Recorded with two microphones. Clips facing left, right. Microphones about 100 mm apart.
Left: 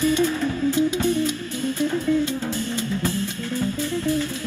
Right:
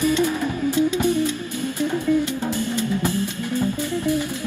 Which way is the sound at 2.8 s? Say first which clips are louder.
Right 3 dB; 15° right (ahead or behind).